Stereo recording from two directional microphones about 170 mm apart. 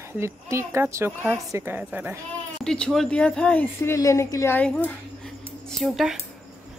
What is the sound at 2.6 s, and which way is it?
Speech, 5° left (ahead or behind).